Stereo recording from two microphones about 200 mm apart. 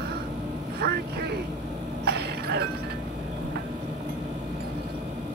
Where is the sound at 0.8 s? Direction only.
50° right (ahead or behind).